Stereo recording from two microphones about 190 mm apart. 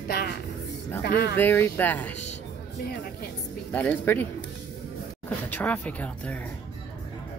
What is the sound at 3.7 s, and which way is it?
Speech, 10° left (ahead or behind).